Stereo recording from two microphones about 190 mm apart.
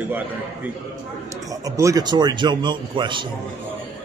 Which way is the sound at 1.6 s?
20° right (ahead or behind).